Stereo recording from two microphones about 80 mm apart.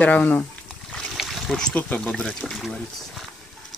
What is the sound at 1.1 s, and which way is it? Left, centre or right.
Speech, centre.